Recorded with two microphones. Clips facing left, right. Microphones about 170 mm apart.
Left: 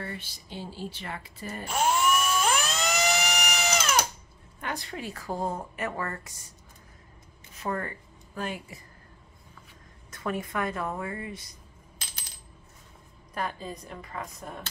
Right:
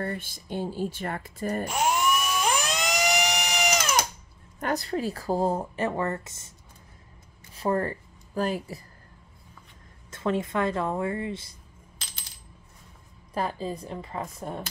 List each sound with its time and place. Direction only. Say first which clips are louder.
0.0 s speech: right 6 dB; 50° right (ahead or behind)
1.7 s a sound: left 2 dB; 15° right (ahead or behind)
4.6 s a woman's voice: right 8 dB; 40° right (ahead or behind); by 6.5 s 25° right (ahead or behind)
7.5 s a woman's voice: right 6 dB; 30° right (ahead or behind)
10.1 s speech: right 5 dB; 25° right (ahead or behind)
13.3 s speech: right 4 dB; 30° right (ahead or behind)